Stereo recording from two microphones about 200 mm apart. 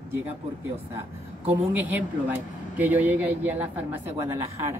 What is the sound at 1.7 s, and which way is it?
Speech, 10° right (ahead or behind).